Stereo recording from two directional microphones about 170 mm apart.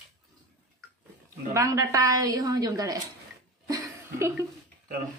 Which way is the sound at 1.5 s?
20° right (ahead or behind).